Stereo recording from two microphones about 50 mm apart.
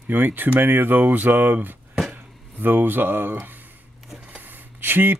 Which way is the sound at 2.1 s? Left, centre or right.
Right.